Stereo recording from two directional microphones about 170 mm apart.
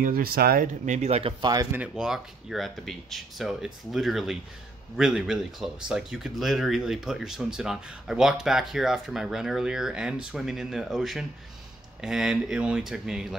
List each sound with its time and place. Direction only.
0.0 s speech: 60° right (ahead or behind)
0.8 s speech: 40° right (ahead or behind); by 1.7 s 25° right (ahead or behind)
1.7 s speech: 5° right (ahead or behind)